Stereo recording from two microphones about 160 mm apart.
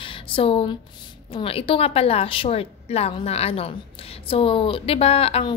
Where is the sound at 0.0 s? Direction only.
35° left (ahead or behind).